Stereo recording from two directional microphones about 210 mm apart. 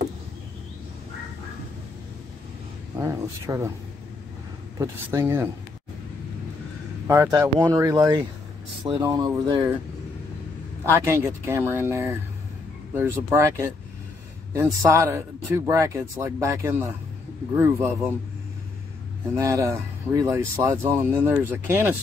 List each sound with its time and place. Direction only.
3.0 s speech: 15° right (ahead or behind)
4.7 s speech: 10° right (ahead or behind)
7.1 s speech: 15° right (ahead or behind)
10.9 s speech: 15° right (ahead or behind)
19.3 s speech: 15° right (ahead or behind)